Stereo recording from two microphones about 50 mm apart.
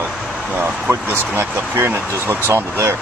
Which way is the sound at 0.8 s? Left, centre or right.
Right.